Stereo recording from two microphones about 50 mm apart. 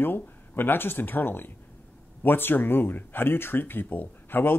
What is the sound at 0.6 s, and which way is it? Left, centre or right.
Speech, left.